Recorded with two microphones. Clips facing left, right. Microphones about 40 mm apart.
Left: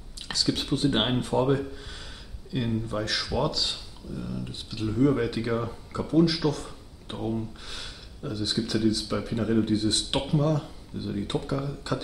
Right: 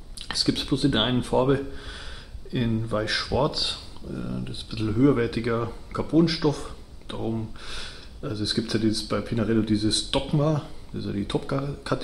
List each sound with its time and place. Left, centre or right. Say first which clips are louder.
0.3 s speech: right 2 dB; centre